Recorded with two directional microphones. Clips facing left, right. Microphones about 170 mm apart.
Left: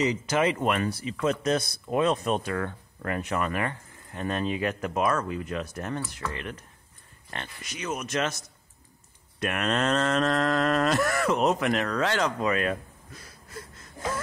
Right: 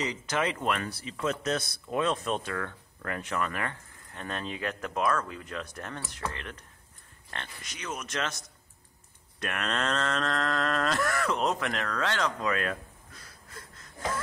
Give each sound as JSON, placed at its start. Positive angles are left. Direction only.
{"t": 0.0, "sound": "cattle", "side_deg": 10}
{"t": 2.5, "sound": "speech", "side_deg": 25}
{"t": 3.1, "sound": "cattle", "side_deg": 15}
{"t": 7.2, "sound": "cattle", "side_deg": 10}
{"t": 9.4, "sound": "cattle", "side_deg": 10}